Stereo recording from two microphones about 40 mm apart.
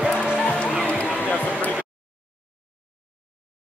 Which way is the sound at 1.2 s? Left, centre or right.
Left.